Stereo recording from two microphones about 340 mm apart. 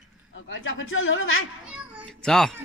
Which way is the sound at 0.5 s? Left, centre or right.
Left.